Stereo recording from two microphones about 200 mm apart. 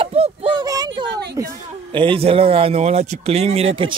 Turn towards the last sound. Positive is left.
turn(degrees=-30)  # may be behind; listen again after turning